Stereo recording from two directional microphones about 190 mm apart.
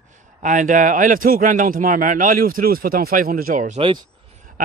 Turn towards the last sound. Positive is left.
turn(degrees=-25)  # may be behind; listen again after turning